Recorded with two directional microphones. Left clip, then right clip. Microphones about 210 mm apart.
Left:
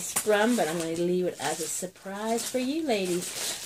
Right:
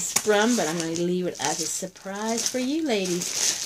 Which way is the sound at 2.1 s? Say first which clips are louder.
Right 2 dB; 40° right (ahead or behind).